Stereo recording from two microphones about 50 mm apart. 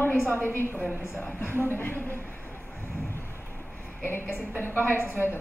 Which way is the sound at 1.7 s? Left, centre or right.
Left.